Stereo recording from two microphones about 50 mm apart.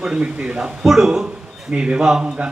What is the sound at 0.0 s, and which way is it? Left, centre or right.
Speech, centre.